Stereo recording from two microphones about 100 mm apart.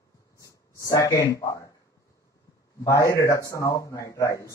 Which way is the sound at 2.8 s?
30° left (ahead or behind).